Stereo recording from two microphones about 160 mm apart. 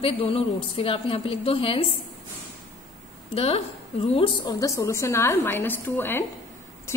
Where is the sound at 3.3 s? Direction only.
40° left (ahead or behind).